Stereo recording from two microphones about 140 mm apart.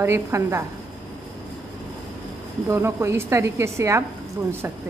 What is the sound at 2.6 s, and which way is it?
A woman's voice, 20° right (ahead or behind).